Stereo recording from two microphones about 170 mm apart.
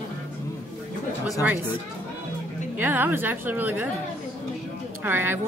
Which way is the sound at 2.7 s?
10° right (ahead or behind).